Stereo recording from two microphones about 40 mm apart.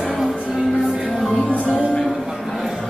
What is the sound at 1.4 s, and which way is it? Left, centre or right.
Music, left.